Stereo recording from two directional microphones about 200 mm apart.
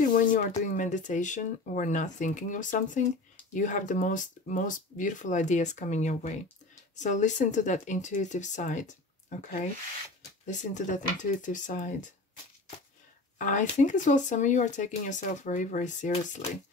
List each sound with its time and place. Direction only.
0.0 s speech: 40° left (ahead or behind)
13.4 s speech: 40° left (ahead or behind)